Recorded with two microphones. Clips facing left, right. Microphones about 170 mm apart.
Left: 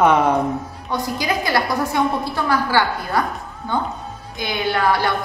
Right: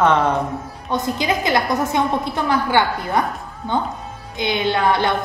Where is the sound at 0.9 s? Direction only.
20° right (ahead or behind).